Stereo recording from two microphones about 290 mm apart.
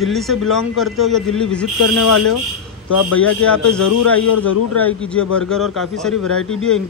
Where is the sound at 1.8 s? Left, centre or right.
Left.